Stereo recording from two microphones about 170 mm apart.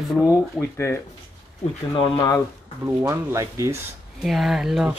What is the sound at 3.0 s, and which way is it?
Speech, 15° right (ahead or behind).